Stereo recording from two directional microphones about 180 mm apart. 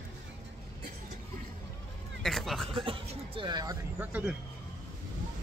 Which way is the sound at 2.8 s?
30° right (ahead or behind).